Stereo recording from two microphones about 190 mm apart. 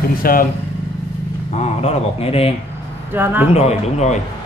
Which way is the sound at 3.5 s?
35° left (ahead or behind).